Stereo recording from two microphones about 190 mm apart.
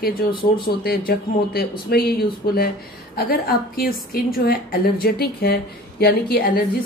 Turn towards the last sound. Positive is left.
turn(degrees=50)  # may be behind; listen again after turning